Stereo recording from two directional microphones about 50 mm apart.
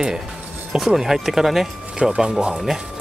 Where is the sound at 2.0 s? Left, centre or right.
Centre.